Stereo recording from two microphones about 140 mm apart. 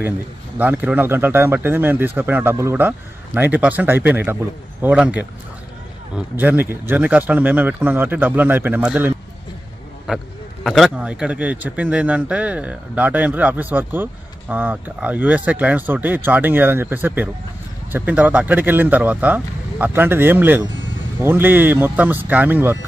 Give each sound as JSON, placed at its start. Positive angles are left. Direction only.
{"t": 0.6, "sound": "a man's voice", "side_deg": -10}